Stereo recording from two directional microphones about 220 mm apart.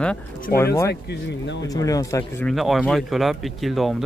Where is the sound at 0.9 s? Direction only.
50° left (ahead or behind).